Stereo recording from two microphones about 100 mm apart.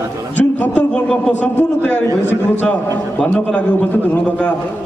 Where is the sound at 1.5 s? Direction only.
20° left (ahead or behind).